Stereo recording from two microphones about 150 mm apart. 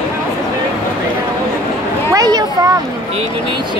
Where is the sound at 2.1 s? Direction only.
25° right (ahead or behind).